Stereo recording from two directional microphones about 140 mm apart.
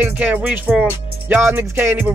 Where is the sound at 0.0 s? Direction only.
10° right (ahead or behind).